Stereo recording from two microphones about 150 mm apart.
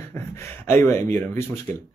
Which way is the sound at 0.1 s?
15° left (ahead or behind).